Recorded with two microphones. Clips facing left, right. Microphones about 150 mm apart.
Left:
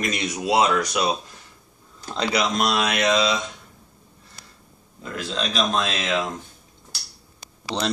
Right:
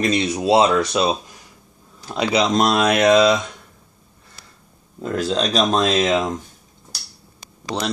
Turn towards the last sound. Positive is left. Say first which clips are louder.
# right 1 dB
turn(degrees=-10)  # may be behind; listen again after turning